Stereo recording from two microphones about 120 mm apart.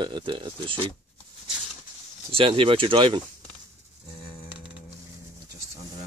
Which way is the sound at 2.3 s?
45° right (ahead or behind).